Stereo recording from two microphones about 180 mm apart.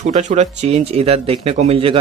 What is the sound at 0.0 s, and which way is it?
Speech, 40° right (ahead or behind).